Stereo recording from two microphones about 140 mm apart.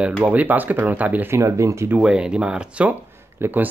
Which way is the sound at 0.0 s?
10° right (ahead or behind).